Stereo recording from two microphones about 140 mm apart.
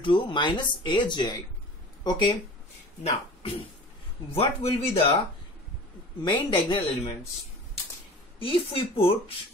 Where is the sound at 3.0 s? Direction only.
45° left (ahead or behind).